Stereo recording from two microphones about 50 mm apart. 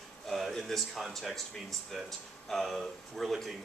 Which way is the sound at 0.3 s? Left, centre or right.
Centre.